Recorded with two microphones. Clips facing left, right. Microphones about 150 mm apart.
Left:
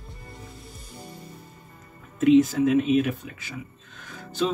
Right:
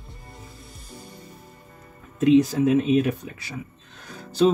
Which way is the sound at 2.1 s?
35° right (ahead or behind).